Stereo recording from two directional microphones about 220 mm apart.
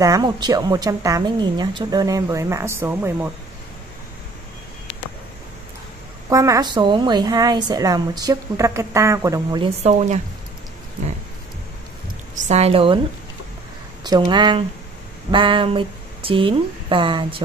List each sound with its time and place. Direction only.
0.0 s a woman's voice: 15° right (ahead or behind)
6.3 s a woman's voice: 15° right (ahead or behind)
9.8 s speech: 30° right (ahead or behind)
12.4 s a woman's voice: 30° right (ahead or behind)
14.0 s a woman's voice: 20° right (ahead or behind)